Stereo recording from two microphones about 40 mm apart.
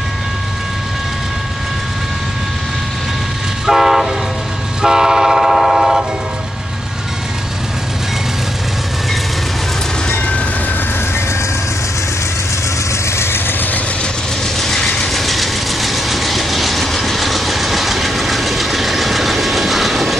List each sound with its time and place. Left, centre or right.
3.6 s train: centre
13.1 s vehicle: left
14.6 s train: centre